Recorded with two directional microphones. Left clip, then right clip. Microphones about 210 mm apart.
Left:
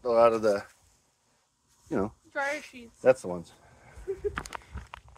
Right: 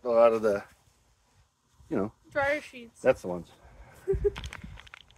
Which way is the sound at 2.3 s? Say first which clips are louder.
Right 6 dB; 45° right (ahead or behind).